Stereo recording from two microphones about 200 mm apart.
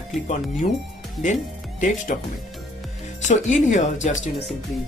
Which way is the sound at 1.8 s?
40° left (ahead or behind).